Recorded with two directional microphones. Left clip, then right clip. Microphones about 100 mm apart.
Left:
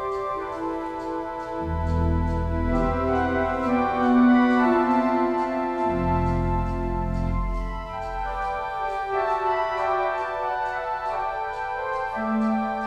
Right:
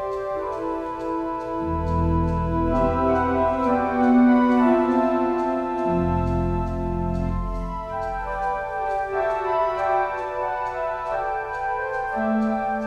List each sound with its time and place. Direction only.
2.7 s music: 20° right (ahead or behind)
9.1 s music: 20° right (ahead or behind)